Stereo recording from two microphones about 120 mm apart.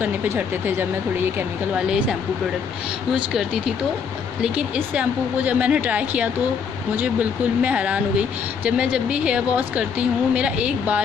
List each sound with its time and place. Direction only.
0.0 s speech: 15° right (ahead or behind)
1.8 s speech: 5° right (ahead or behind)